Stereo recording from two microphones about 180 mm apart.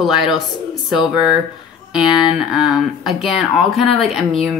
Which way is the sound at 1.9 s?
25° left (ahead or behind).